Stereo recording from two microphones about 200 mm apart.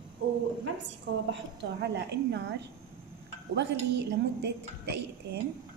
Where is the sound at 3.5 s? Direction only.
60° right (ahead or behind).